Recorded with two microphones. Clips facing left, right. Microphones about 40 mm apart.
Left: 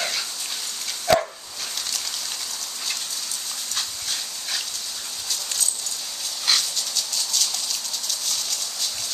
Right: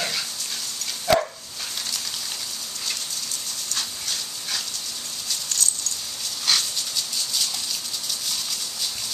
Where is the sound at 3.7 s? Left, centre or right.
Centre.